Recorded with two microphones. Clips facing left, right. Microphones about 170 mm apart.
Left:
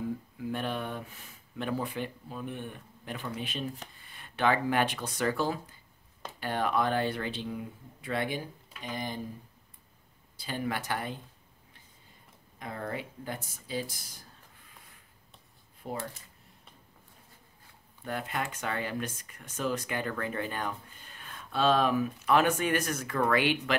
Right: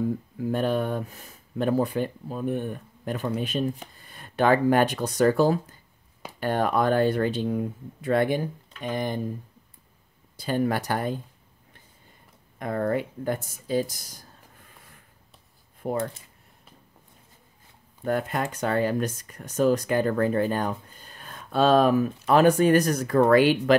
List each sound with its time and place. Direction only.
0.4 s speech: 45° right (ahead or behind)
10.3 s speech: 45° right (ahead or behind)
12.5 s speech: 55° right (ahead or behind)
15.8 s speech: 55° right (ahead or behind)
18.0 s speech: 45° right (ahead or behind)